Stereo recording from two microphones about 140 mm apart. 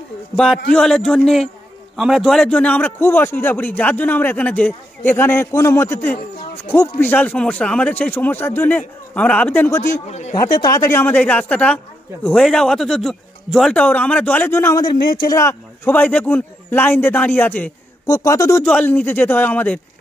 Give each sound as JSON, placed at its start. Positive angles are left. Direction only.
{"t": 0.4, "sound": "a man's voice", "side_deg": 5}
{"t": 10.0, "sound": "speech", "side_deg": 55}
{"t": 10.6, "sound": "a man's voice", "side_deg": 25}
{"t": 14.8, "sound": "a man's voice", "side_deg": 35}
{"t": 15.2, "sound": "a man's voice", "side_deg": 20}
{"t": 18.0, "sound": "speech", "side_deg": 25}
{"t": 18.6, "sound": "a man's voice", "side_deg": 10}